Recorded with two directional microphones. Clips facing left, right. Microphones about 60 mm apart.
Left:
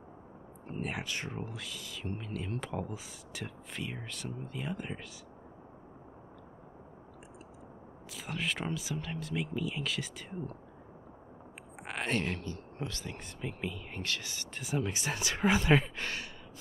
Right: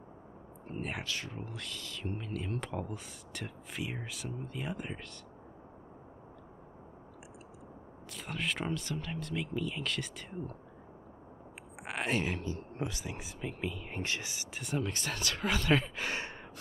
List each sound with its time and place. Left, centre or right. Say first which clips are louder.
0.7 s speech: left 1 dB; centre
1.0 s speech: left 1 dB; left
1.4 s speech: left 1 dB; centre
8.1 s speech: even; centre
11.7 s speech: even; centre
12.5 s speech: right 2 dB; centre
13.9 s speech: right 1 dB; right
14.5 s speech: left 1 dB; centre
15.7 s speech: left 2 dB; centre
16.1 s a sound: right 3 dB; right